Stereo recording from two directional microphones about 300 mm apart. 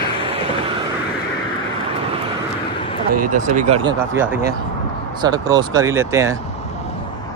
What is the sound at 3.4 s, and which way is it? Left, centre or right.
Speech, right.